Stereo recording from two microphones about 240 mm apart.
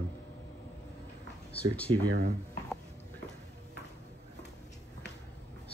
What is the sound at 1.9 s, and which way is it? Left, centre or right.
Speech, right.